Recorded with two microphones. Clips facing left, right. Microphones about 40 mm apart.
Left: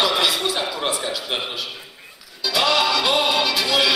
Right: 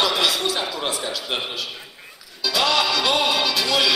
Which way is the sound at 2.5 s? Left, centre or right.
Centre.